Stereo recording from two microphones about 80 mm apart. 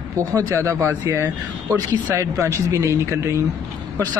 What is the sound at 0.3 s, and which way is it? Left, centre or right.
Speech, right.